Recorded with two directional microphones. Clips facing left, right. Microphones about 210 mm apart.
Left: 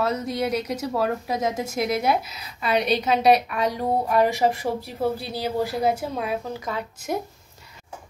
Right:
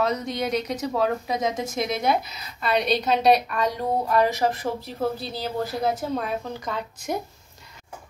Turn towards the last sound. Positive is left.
turn(degrees=5)  # may be behind; listen again after turning